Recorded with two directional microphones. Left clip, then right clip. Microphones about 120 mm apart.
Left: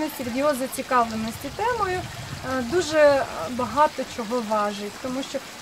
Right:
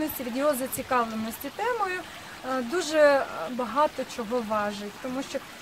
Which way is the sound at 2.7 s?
10° right (ahead or behind).